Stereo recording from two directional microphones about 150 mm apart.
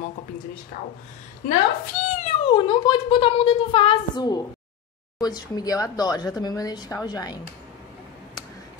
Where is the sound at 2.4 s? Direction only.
35° left (ahead or behind).